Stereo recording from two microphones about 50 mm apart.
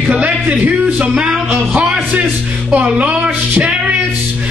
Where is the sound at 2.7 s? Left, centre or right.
Right.